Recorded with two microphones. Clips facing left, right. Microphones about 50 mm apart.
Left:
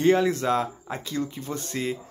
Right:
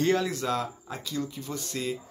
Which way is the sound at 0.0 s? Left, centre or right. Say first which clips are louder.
Left 5 dB; left.